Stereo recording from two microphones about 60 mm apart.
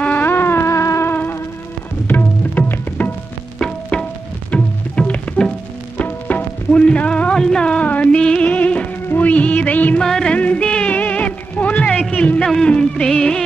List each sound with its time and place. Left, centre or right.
0.0 s music: left
0.7 s music: left
2.0 s music: left
3.5 s music: centre
9.9 s music: centre
12.1 s a sound: left
12.4 s music: centre